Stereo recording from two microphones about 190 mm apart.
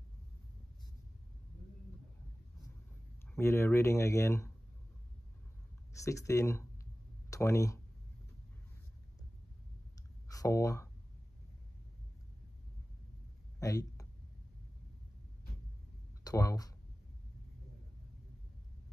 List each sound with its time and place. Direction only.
3.3 s speech: 15° left (ahead or behind)
5.9 s speech: 15° left (ahead or behind)
10.2 s speech: 15° left (ahead or behind)
13.6 s a sound: 15° left (ahead or behind)
16.3 s speech: 20° left (ahead or behind)